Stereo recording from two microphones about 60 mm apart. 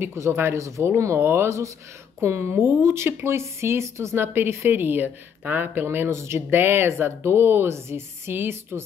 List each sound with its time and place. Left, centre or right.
0.0 s speech: right
1.2 s speech: right
2.5 s speech: right
2.8 s speech: right
4.3 s speech: right